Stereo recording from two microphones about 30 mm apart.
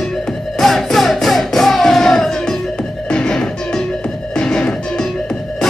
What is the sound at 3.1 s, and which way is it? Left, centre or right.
Music, left.